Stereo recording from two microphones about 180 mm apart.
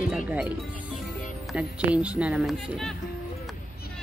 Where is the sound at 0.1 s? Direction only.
5° right (ahead or behind).